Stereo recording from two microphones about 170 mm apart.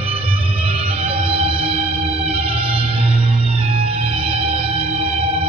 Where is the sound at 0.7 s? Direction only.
35° right (ahead or behind).